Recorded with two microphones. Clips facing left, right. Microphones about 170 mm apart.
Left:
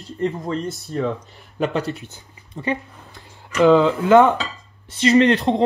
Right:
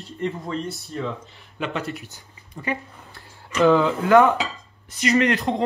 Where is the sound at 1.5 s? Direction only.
35° left (ahead or behind).